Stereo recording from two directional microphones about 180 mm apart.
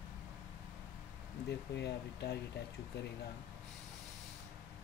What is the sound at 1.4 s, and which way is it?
Speech, 65° left (ahead or behind).